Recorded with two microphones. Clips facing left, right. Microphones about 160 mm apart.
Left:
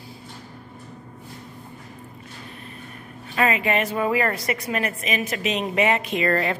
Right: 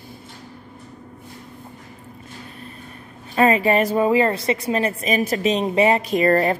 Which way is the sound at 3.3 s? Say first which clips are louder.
Right 5 dB; 35° right (ahead or behind).